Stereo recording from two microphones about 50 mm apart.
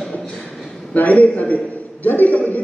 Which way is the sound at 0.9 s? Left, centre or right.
Left.